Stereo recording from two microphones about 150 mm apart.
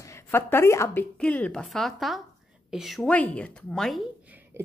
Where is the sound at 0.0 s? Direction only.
15° left (ahead or behind).